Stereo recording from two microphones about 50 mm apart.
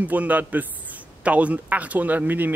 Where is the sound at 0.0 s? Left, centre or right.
Right.